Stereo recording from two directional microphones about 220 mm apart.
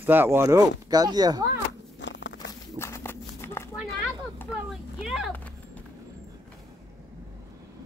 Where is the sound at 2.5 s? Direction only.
15° left (ahead or behind).